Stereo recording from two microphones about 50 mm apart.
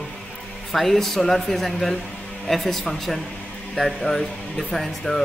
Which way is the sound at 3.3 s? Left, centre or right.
Left.